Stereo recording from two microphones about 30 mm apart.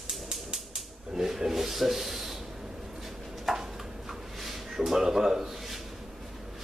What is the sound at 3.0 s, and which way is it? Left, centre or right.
Chopping, centre.